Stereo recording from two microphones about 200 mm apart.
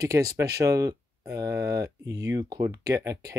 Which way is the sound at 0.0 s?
15° right (ahead or behind).